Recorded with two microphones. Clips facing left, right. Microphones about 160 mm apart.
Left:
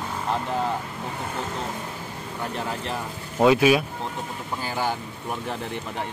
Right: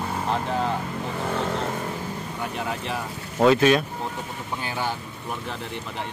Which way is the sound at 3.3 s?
10° left (ahead or behind).